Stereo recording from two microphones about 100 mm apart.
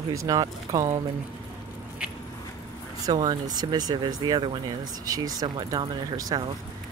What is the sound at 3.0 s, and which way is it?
Speech, 40° right (ahead or behind).